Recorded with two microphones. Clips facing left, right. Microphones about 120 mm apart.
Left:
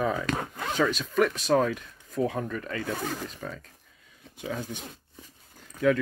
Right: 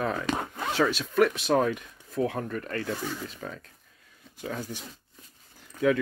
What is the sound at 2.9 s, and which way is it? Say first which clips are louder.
Speech: left 2 dB; 50° left (ahead or behind).